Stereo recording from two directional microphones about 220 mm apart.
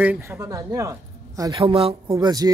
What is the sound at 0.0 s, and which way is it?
Speech, 10° right (ahead or behind).